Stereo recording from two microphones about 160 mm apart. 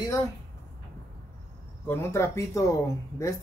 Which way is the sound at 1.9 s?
15° left (ahead or behind).